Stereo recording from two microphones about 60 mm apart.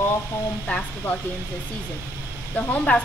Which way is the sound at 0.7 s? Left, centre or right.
Left.